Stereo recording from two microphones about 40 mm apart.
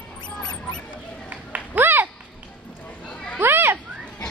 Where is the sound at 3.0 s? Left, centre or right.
Left.